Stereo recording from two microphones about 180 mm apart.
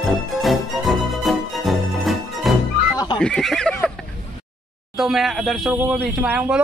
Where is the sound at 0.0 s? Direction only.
Centre (ahead or behind).